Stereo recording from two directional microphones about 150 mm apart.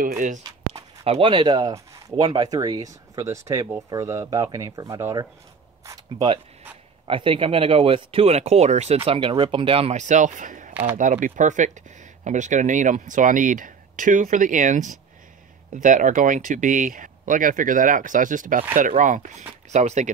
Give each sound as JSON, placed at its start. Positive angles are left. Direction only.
{"t": 0.1, "sound": "speech", "side_deg": -55}
{"t": 1.0, "sound": "speech", "side_deg": -40}
{"t": 7.1, "sound": "speech", "side_deg": -35}